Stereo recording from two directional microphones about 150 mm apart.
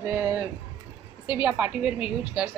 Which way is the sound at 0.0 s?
15° right (ahead or behind).